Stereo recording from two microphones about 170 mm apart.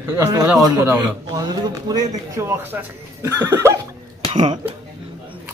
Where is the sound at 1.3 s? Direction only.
25° right (ahead or behind).